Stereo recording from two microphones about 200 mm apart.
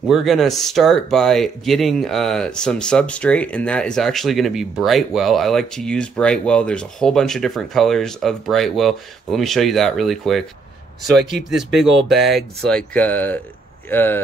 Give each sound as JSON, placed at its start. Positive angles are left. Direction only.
{"t": 0.1, "sound": "speech", "side_deg": 0}
{"t": 11.1, "sound": "speech", "side_deg": -55}
{"t": 12.1, "sound": "speech", "side_deg": 0}